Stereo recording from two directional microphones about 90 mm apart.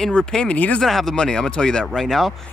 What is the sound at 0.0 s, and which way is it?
Speech, 10° left (ahead or behind).